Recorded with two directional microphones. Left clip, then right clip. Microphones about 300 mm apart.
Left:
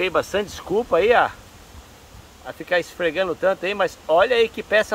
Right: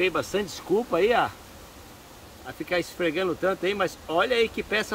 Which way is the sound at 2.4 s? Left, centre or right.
Centre.